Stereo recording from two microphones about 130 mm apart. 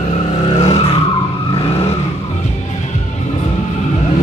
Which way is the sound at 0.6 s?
55° left (ahead or behind).